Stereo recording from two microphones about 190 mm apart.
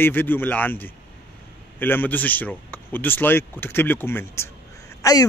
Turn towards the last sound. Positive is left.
turn(degrees=15)  # may be behind; listen again after turning